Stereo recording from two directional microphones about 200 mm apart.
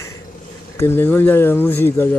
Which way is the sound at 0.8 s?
10° left (ahead or behind).